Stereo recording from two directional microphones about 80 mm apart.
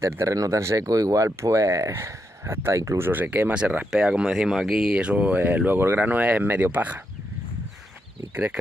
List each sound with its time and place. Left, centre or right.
0.0 s speech: right
3.1 s speech: right